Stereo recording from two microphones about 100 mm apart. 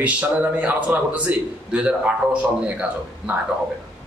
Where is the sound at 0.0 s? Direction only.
15° right (ahead or behind).